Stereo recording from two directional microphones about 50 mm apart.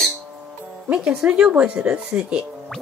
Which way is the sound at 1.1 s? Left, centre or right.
Right.